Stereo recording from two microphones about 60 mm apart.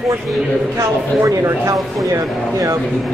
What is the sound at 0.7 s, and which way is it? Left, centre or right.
Speech, right.